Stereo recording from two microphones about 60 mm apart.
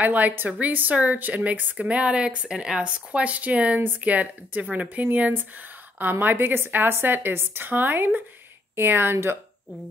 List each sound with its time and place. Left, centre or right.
0.0 s speech: right